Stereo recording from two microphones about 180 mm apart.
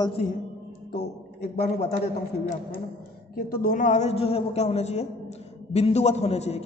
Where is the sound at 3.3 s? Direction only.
55° left (ahead or behind); by 6.6 s 35° left (ahead or behind).